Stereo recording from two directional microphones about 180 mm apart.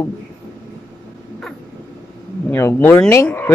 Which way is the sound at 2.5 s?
15° left (ahead or behind).